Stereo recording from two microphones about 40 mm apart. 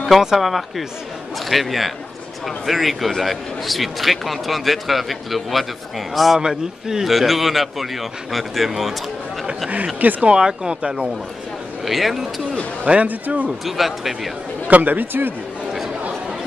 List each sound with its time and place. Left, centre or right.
0.4 s a man's voice: centre
10.2 s speech: centre
11.8 s a man's voice: centre
12.8 s speech: right
13.7 s a man's voice: centre
14.7 s speech: right